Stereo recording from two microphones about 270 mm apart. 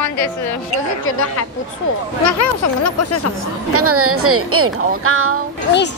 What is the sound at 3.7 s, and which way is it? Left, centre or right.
Speech, right.